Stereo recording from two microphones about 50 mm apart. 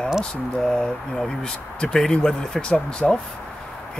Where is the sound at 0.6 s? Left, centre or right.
Centre.